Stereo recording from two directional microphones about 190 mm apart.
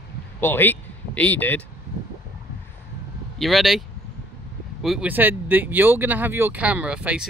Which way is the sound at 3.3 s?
Centre (ahead or behind).